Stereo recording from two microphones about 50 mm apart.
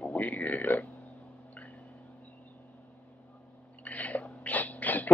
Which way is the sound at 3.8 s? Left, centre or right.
Left.